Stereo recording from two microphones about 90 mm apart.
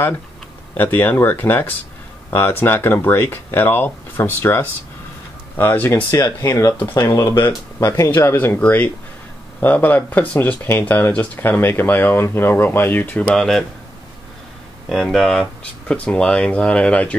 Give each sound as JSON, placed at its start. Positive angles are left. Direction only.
{"t": 0.7, "sound": "speech", "side_deg": 20}
{"t": 6.1, "sound": "speech", "side_deg": 40}
{"t": 13.3, "sound": "speech", "side_deg": 5}
{"t": 14.9, "sound": "speech", "side_deg": 5}